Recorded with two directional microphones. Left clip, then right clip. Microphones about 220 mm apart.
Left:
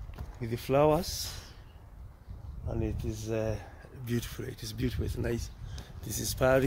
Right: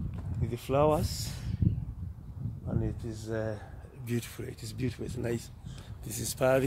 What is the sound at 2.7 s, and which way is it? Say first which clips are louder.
Speech: left 2 dB; 5° right (ahead or behind).